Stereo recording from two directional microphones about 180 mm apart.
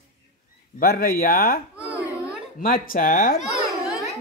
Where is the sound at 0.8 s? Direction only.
55° left (ahead or behind).